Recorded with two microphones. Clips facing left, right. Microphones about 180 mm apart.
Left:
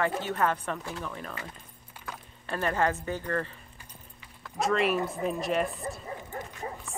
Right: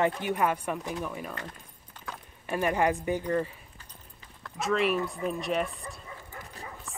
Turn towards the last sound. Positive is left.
turn(degrees=35)  # may be behind; listen again after turning